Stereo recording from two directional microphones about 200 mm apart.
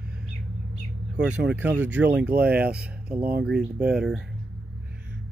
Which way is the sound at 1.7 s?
10° right (ahead or behind).